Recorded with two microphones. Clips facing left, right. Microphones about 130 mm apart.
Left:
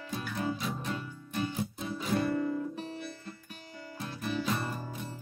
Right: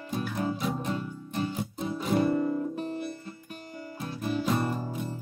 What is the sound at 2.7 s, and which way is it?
Music, 50° right (ahead or behind).